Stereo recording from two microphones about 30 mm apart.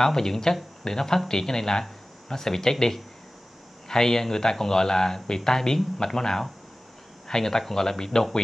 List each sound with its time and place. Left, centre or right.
0.0 s speech: centre